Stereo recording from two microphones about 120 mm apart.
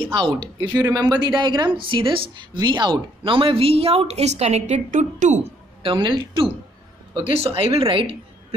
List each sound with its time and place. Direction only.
0.0 s speech: 40° right (ahead or behind)
0.8 s speech: 30° right (ahead or behind); by 5.5 s 90° right
5.8 s a woman's voice: 45° right (ahead or behind)